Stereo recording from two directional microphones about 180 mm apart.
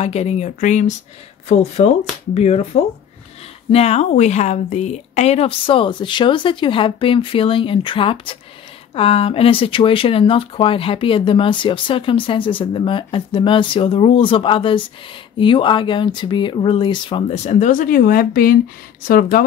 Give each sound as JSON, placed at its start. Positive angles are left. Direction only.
{"t": 0.0, "sound": "speech", "side_deg": 35}